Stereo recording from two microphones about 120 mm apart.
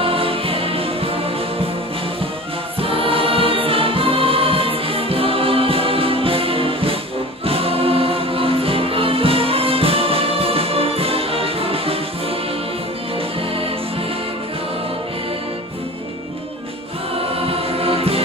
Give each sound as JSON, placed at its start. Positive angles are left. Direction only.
{"t": 0.0, "sound": "music", "side_deg": -50}
{"t": 2.8, "sound": "choir", "side_deg": -50}
{"t": 7.4, "sound": "music", "side_deg": -50}
{"t": 17.5, "sound": "choir", "side_deg": -55}